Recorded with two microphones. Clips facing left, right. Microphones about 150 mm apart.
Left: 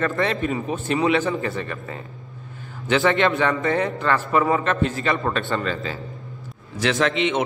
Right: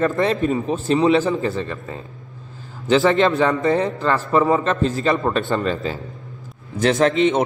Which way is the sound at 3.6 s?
30° right (ahead or behind).